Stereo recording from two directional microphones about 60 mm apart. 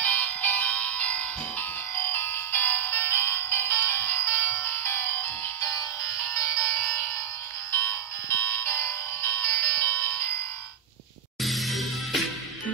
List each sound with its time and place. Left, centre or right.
0.0 s music: left
2.0 s music: left
5.6 s music: left
7.8 s music: left
11.4 s music: centre